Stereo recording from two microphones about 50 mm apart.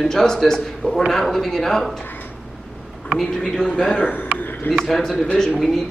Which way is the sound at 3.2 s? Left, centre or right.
Centre.